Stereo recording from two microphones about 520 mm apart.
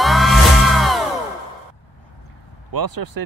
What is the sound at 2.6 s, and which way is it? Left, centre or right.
Speech, right.